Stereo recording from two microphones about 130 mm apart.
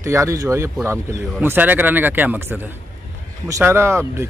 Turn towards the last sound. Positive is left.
turn(degrees=-20)  # may be behind; listen again after turning